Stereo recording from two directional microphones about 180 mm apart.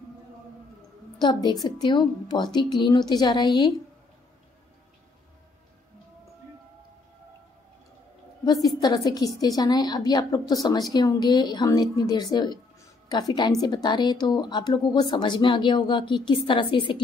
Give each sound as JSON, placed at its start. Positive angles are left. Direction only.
{"t": 1.2, "sound": "a woman's voice", "side_deg": 25}
{"t": 8.5, "sound": "a woman's voice", "side_deg": 20}